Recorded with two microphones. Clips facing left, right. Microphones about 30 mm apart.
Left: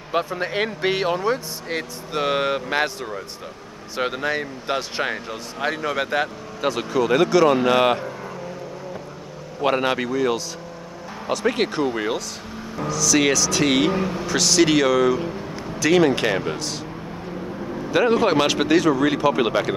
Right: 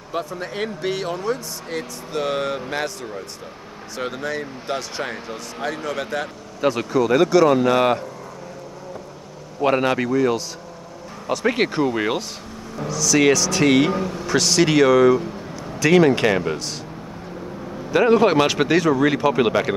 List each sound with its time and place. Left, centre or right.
0.1 s speech: left
7.4 s speech: left
9.8 s speech: centre
11.4 s speech: centre
13.9 s speech: centre
14.2 s speech: centre
17.9 s speech: centre